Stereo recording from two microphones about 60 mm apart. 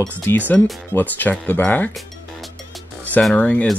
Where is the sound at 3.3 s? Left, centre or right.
Left.